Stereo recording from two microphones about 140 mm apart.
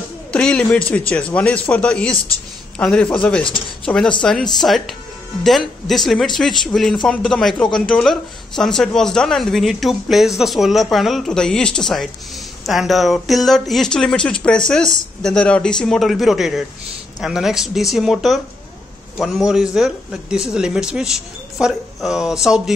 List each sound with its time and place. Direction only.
0.3 s a man's voice: 5° left (ahead or behind)